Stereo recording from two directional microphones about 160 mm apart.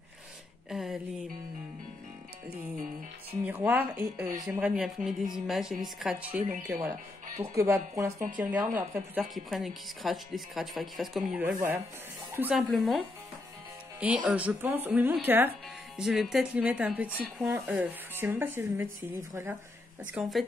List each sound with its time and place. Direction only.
0.7 s a sound: 5° right (ahead or behind)
3.4 s speech: 10° right (ahead or behind)
16.0 s speech: centre (ahead or behind)
20.0 s speech: 5° right (ahead or behind)